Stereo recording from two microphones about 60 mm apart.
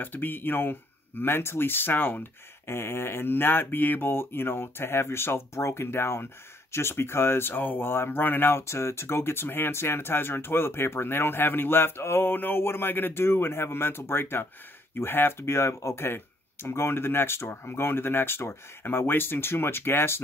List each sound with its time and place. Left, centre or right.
0.0 s speech: left
8.6 s speech: left